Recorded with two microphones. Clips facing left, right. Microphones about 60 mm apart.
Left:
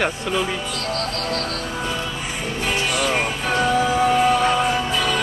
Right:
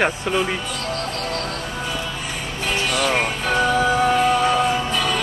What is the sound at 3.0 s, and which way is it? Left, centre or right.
Music, centre.